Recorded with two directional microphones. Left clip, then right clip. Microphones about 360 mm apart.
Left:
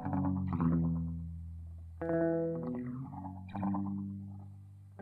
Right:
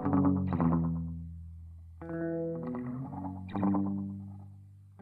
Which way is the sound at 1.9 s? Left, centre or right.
Left.